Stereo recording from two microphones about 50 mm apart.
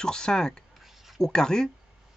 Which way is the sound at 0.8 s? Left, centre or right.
Centre.